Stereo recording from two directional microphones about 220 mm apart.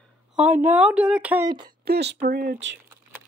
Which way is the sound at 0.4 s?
10° right (ahead or behind).